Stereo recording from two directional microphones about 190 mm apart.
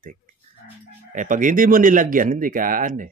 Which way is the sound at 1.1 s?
45° right (ahead or behind).